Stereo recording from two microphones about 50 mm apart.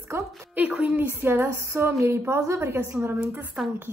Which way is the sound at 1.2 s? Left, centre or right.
Right.